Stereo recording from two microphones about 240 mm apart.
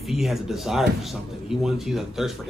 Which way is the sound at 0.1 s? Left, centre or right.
Centre.